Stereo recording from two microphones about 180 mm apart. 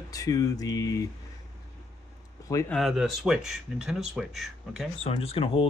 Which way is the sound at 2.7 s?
Centre (ahead or behind).